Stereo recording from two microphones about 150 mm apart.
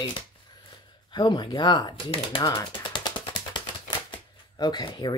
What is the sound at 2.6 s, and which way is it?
Typewriter, 25° left (ahead or behind).